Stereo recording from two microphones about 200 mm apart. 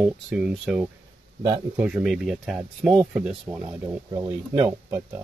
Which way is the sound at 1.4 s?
10° right (ahead or behind).